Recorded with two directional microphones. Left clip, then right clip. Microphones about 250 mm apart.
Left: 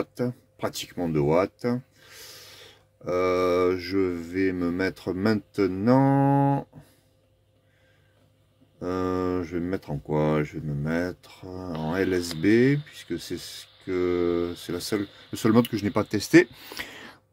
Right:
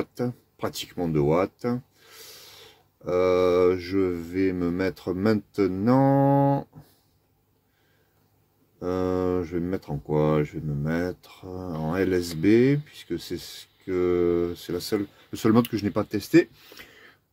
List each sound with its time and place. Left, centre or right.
0.1 s speech: centre
8.7 s speech: centre
16.6 s a sound: left